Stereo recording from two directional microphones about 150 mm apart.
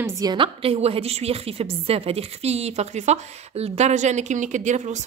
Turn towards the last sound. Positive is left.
turn(degrees=-50)  # may be behind; listen again after turning